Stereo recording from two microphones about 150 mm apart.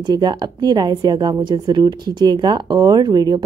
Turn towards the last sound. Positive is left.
turn(degrees=-30)  # may be behind; listen again after turning